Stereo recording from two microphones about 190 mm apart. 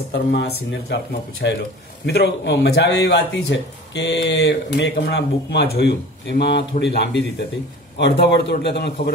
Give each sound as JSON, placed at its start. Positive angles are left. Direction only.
{"t": 0.1, "sound": "speech", "side_deg": 60}